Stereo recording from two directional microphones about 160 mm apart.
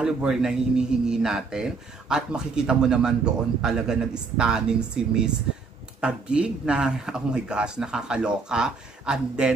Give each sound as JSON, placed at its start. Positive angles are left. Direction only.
{"t": 0.0, "sound": "speech", "side_deg": -5}